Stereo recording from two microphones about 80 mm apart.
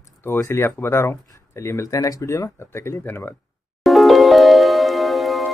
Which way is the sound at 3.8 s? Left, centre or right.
Centre.